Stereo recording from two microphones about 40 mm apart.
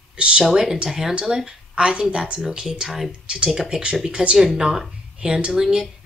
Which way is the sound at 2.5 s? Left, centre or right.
Centre.